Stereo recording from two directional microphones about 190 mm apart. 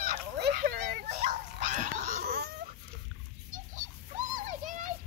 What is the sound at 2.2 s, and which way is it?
Baby cry, 60° right (ahead or behind).